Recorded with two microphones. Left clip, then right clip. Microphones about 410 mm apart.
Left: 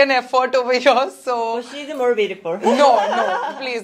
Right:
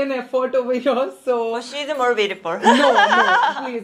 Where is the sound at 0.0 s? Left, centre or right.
Left.